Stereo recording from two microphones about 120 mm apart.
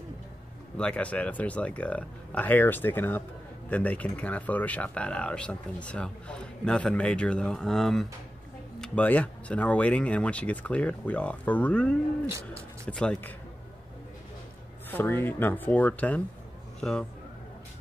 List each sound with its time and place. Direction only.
0.7 s speech: 10° left (ahead or behind)
14.9 s a man's voice: 15° left (ahead or behind)